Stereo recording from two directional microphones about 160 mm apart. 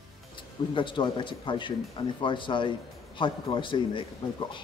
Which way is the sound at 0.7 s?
30° left (ahead or behind).